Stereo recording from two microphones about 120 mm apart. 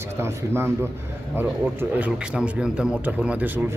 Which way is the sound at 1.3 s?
10° right (ahead or behind).